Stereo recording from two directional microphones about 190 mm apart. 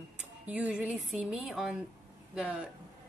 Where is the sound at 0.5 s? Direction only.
5° right (ahead or behind).